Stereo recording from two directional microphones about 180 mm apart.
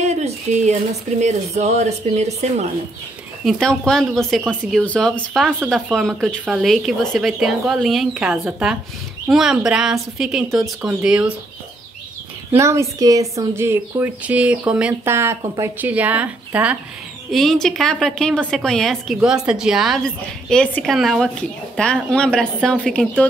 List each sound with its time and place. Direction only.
0.0 s a sound: 40° right (ahead or behind)
1.2 s a woman's voice: 40° right (ahead or behind)
3.4 s speech: 5° left (ahead or behind)
12.5 s speech: 15° right (ahead or behind); by 23.2 s 5° left (ahead or behind)